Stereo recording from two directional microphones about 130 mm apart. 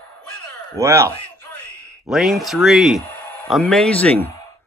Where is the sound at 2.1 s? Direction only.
Centre (ahead or behind).